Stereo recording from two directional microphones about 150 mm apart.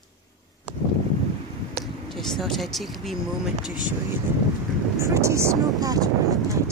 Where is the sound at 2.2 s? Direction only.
5° left (ahead or behind).